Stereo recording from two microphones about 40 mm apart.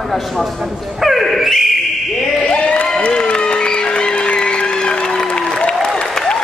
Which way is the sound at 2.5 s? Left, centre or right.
Left.